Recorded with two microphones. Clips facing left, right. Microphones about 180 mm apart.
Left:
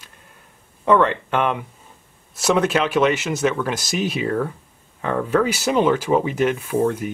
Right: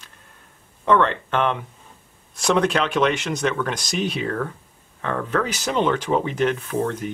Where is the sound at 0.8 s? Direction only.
10° left (ahead or behind).